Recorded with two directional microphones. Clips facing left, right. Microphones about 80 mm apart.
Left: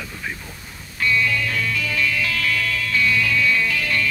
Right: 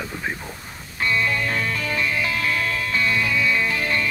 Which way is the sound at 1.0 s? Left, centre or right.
Right.